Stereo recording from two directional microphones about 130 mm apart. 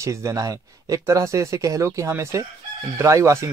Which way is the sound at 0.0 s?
25° right (ahead or behind).